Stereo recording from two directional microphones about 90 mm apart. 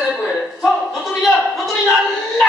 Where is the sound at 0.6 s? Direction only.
Centre (ahead or behind).